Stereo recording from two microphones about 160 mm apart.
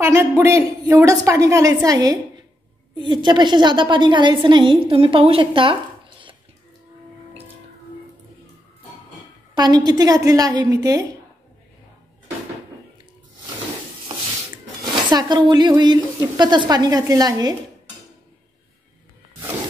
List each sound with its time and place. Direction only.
0.0 s a woman's voice: 15° right (ahead or behind); by 6.3 s 30° right (ahead or behind)
9.6 s a woman's voice: 25° right (ahead or behind)
15.0 s a woman's voice: 25° right (ahead or behind)